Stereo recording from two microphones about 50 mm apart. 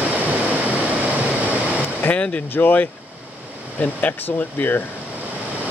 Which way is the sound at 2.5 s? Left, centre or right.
Left.